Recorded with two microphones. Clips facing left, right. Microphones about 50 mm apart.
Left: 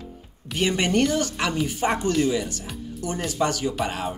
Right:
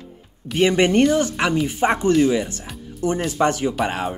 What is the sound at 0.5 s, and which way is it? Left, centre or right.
Speech, right.